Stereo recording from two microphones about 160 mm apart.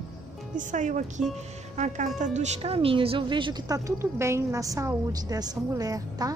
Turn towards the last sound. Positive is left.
turn(degrees=-25)  # may be behind; listen again after turning